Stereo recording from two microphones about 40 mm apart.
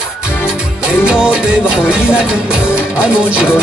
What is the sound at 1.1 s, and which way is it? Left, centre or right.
Music, right.